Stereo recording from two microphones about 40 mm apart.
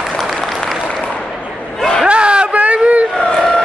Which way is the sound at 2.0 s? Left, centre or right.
Right.